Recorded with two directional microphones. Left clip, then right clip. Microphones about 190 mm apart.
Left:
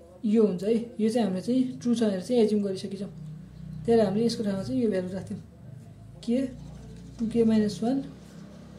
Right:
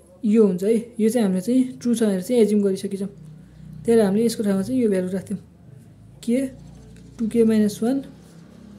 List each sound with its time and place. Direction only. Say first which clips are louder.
0.2 s a woman's voice: right 6 dB; 40° right (ahead or behind)